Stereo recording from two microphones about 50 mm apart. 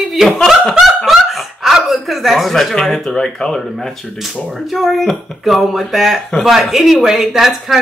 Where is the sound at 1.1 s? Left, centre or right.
Centre.